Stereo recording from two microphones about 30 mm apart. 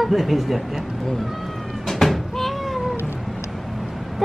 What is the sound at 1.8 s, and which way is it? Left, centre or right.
Cat, centre.